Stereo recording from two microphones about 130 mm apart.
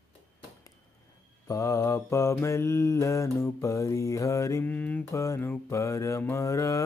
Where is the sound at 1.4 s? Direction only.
25° left (ahead or behind).